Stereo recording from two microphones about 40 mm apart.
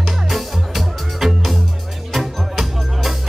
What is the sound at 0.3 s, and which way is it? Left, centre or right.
Music, centre.